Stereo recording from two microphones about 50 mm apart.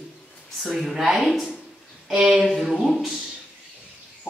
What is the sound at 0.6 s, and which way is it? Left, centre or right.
A woman's voice, centre.